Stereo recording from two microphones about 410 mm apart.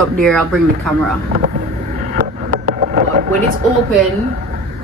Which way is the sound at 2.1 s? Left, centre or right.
Centre.